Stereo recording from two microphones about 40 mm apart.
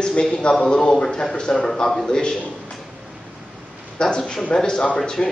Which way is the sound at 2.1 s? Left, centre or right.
Centre.